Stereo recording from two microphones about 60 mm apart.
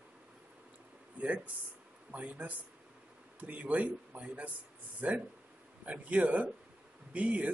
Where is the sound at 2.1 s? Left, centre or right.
Right.